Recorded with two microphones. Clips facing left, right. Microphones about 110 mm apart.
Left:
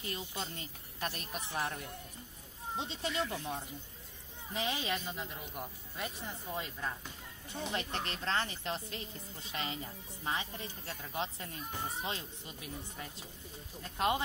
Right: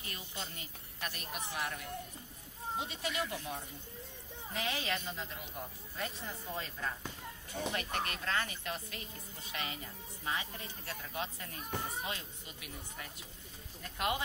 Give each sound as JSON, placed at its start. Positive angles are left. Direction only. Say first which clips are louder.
{"t": 0.0, "sound": "a woman's voice", "louder": "left 4 dB", "side_deg": 25}
{"t": 2.8, "sound": "speech", "louder": "left 3 dB", "side_deg": 25}
{"t": 7.7, "sound": "speech", "louder": "even", "side_deg": 25}